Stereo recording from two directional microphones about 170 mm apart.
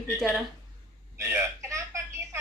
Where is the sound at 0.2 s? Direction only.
Centre (ahead or behind).